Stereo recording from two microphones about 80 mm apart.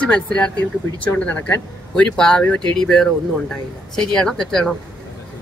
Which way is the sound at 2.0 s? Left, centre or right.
Centre.